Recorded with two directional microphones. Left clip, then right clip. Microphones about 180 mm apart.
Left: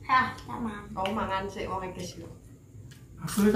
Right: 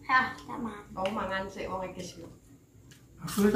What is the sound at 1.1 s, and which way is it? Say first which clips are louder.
A woman's voice: left 2 dB; 15° left (ahead or behind).